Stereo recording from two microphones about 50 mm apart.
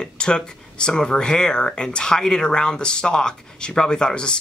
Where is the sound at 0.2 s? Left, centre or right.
Centre.